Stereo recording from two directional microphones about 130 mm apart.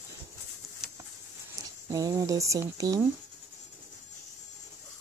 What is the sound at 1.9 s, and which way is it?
Speech, 25° right (ahead or behind).